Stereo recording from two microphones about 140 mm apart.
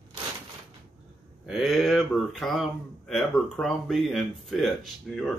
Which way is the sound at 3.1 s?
Centre (ahead or behind).